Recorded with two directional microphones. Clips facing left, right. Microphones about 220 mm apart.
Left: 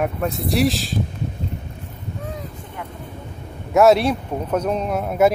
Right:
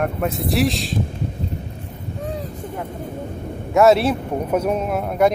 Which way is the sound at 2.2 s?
35° right (ahead or behind).